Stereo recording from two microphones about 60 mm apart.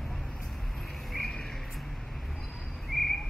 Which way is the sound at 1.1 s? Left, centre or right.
Centre.